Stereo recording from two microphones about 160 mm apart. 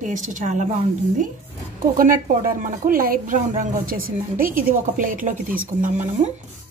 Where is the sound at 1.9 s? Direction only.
60° right (ahead or behind).